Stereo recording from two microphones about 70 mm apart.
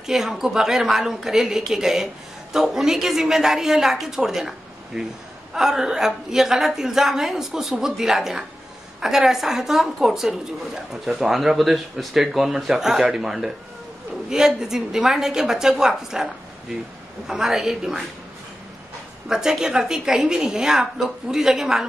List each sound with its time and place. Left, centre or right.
0.0 s a woman's voice: centre
17.3 s a woman's voice: centre
19.2 s a woman's voice: centre